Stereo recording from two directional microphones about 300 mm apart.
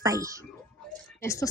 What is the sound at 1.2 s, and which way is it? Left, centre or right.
Speech, centre.